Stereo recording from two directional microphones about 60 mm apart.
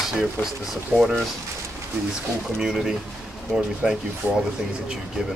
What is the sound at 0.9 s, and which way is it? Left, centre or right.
Speech, right.